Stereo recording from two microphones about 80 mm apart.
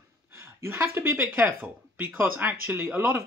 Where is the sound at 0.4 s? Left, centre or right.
Right.